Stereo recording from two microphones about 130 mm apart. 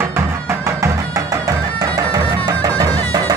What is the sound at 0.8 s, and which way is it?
Music, 25° right (ahead or behind).